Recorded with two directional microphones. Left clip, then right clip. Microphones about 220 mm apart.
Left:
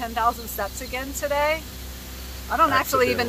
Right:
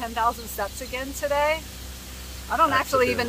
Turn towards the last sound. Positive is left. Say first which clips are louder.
# left 1 dB
turn(degrees=-15)  # may be behind; listen again after turning